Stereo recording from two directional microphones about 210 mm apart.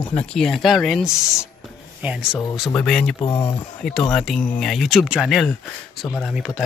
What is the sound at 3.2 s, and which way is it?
Speech, 20° left (ahead or behind).